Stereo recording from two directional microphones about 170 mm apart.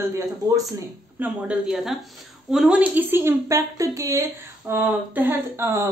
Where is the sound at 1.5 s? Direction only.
5° right (ahead or behind).